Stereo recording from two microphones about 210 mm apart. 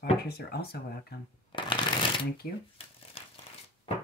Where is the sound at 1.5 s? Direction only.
25° left (ahead or behind).